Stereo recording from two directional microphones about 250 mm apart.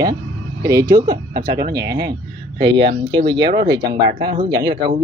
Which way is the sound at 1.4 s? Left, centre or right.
Right.